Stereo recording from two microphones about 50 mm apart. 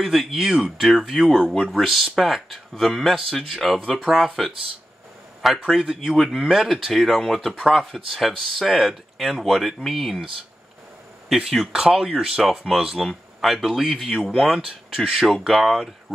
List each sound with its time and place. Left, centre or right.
0.0 s speech: centre
0.3 s speech: centre
1.4 s speech: centre
1.7 s speech: centre
11.2 s speech: centre
14.3 s speech: centre
14.7 s speech: centre